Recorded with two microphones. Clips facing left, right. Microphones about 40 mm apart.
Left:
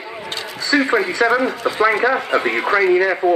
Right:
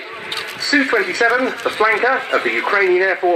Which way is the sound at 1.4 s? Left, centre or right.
Right.